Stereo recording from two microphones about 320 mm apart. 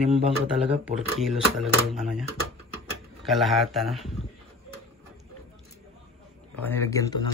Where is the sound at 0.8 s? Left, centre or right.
Centre.